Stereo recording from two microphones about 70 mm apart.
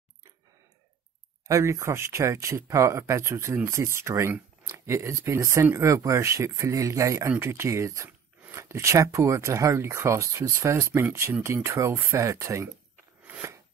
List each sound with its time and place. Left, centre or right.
1.5 s speech: right